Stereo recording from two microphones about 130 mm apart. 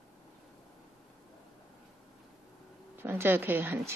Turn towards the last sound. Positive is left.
turn(degrees=-15)  # may be behind; listen again after turning